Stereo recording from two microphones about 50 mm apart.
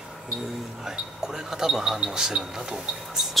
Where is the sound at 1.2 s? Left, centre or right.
Centre.